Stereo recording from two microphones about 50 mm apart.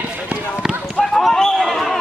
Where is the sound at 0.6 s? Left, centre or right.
Centre.